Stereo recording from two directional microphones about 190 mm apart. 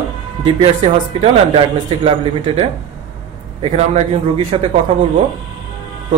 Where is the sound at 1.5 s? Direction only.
30° right (ahead or behind).